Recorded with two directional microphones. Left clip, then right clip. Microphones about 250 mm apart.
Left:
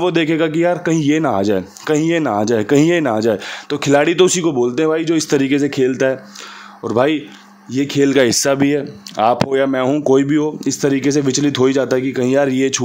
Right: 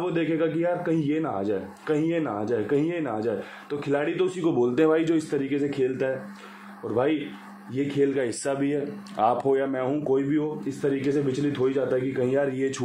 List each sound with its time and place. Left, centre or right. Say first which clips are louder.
0.0 s a man's voice: left 10 dB; left
4.5 s speech: left 6 dB; left
5.3 s a man's voice: left 11 dB; left
7.7 s a man's voice: left 10 dB; left